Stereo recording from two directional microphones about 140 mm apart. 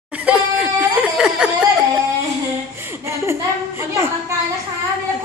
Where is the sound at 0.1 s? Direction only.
10° right (ahead or behind).